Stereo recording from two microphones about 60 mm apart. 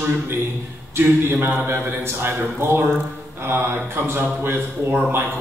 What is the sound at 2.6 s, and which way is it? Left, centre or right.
Speech, right.